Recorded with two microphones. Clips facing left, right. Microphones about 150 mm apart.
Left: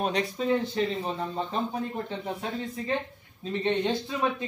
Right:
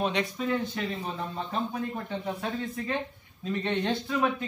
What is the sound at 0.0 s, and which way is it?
Speech, 35° left (ahead or behind).